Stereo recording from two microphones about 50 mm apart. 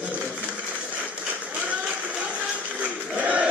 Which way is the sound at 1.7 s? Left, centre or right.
Right.